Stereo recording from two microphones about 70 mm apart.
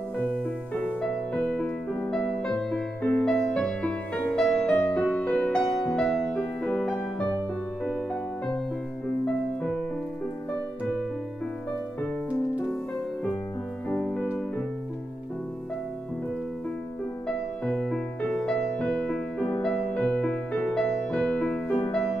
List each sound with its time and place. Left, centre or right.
1.0 s music: centre
13.9 s music: centre
17.6 s music: centre